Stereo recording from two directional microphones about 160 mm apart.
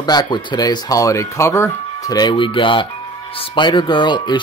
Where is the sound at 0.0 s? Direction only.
25° left (ahead or behind).